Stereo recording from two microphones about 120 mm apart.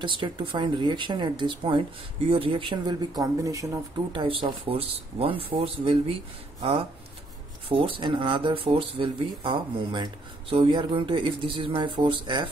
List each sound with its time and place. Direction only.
0.0 s speech: 40° right (ahead or behind)
4.1 s speech: 45° right (ahead or behind)